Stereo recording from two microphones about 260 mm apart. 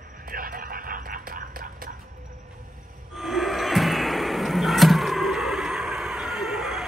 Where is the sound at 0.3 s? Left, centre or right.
Right.